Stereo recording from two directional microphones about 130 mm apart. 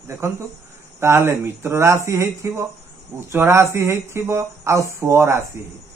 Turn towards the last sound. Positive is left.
turn(degrees=-20)  # may be behind; listen again after turning